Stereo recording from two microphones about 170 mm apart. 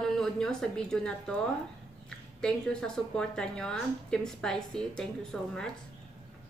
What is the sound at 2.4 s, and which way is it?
A woman's voice, 5° left (ahead or behind).